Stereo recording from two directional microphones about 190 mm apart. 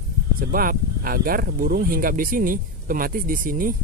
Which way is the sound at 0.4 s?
50° right (ahead or behind).